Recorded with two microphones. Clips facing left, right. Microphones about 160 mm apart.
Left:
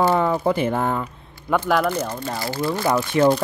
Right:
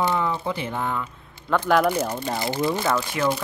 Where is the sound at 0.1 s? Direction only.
50° left (ahead or behind).